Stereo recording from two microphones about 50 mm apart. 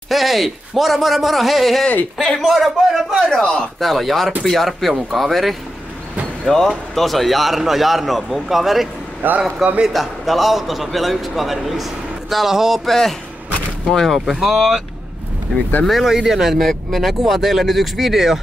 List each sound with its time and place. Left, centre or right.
0.1 s a man's voice: centre
3.3 s a man's voice: centre
3.8 s a man's voice: centre
9.2 s a man's voice: right
9.6 s a man's voice: centre
14.1 s a man's voice: centre
15.8 s a man's voice: centre